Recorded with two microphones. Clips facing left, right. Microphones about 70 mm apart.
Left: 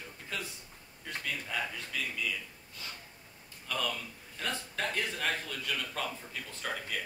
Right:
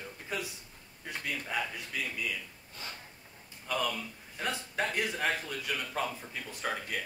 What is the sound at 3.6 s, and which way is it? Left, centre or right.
A man's voice, centre.